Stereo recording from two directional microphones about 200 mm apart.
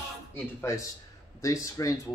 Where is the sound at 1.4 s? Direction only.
15° left (ahead or behind).